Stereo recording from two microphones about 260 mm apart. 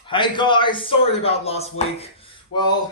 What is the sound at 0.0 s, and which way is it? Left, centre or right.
A man's voice, centre.